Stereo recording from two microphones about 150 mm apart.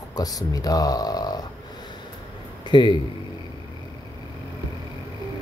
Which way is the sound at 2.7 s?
30° left (ahead or behind).